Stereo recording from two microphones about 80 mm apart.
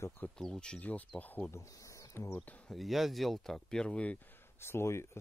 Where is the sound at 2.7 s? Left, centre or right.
Centre.